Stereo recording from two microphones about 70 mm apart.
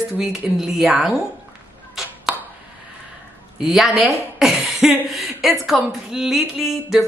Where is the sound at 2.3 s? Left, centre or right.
Centre.